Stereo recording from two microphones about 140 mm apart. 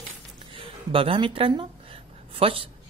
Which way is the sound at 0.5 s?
40° right (ahead or behind).